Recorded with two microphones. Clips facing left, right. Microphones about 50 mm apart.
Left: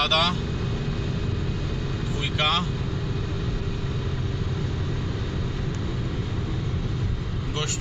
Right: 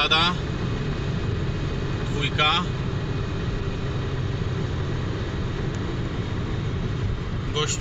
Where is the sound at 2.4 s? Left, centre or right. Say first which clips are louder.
Right 2 dB; centre.